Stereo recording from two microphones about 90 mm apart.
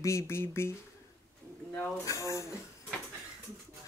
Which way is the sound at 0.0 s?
30° left (ahead or behind).